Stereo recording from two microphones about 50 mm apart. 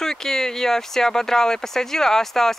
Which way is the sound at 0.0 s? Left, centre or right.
Centre.